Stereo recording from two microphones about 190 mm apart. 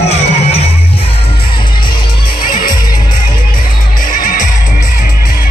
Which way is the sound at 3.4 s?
45° left (ahead or behind).